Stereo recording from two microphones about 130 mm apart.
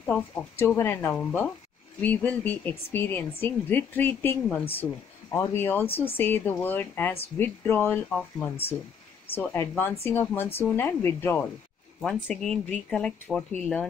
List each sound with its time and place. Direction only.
0.0 s speech: 10° left (ahead or behind)